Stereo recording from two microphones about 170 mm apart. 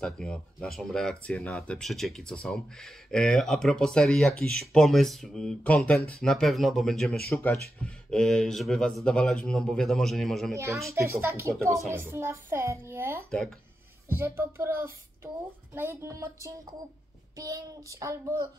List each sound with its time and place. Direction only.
0.0 s speech: 5° left (ahead or behind)
10.5 s a child's voice: 20° right (ahead or behind)
13.3 s speech: 5° left (ahead or behind)
14.0 s a child's voice: 15° right (ahead or behind)